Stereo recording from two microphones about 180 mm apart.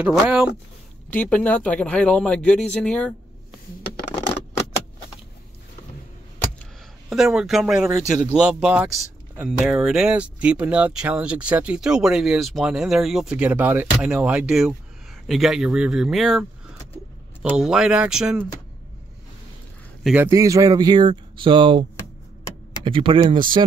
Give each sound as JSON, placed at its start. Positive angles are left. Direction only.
{"t": 0.0, "sound": "speech", "side_deg": -5}
{"t": 1.1, "sound": "speech", "side_deg": 10}
{"t": 7.1, "sound": "speech", "side_deg": 0}
{"t": 20.0, "sound": "speech", "side_deg": -5}
{"t": 20.2, "sound": "speech", "side_deg": -15}
{"t": 22.8, "sound": "speech", "side_deg": -30}